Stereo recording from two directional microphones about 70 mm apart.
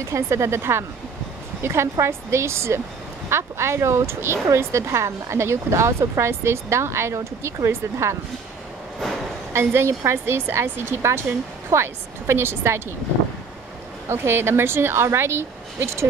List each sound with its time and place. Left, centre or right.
0.0 s speech: right
9.5 s speech: right
14.0 s speech: right